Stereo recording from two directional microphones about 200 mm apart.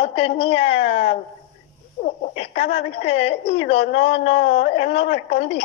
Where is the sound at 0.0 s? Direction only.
25° left (ahead or behind).